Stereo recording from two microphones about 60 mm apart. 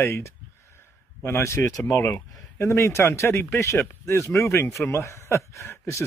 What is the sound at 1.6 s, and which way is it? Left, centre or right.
Speech, left.